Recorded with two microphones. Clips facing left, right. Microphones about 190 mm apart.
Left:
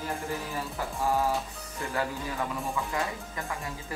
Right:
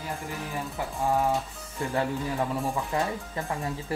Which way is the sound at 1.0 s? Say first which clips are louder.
Right 2 dB; 15° right (ahead or behind).